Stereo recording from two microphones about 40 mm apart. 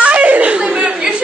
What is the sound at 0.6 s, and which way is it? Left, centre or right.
Chuckle, right.